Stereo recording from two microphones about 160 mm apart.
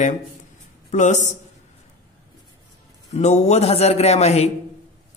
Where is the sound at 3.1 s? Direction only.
45° left (ahead or behind).